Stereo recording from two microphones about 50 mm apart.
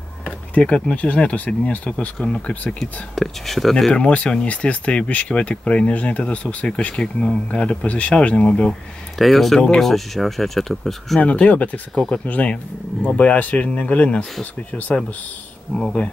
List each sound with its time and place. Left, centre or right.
0.8 s speech: left
2.1 s speech: centre
2.8 s speech: centre
3.9 s speech: left
9.2 s speech: centre
11.1 s speech: left
13.0 s speech: centre
15.7 s speech: centre